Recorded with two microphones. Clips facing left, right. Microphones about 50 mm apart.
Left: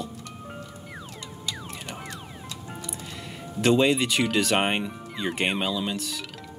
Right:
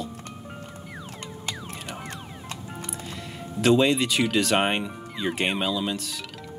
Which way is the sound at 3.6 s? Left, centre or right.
Centre.